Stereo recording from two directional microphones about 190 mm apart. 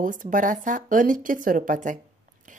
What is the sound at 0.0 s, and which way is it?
Speech, 45° right (ahead or behind).